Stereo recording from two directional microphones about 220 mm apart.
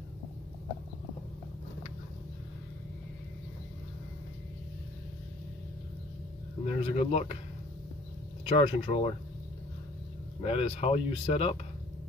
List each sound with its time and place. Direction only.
6.6 s speech: 30° left (ahead or behind)
8.5 s speech: 30° left (ahead or behind)
10.4 s speech: 25° left (ahead or behind)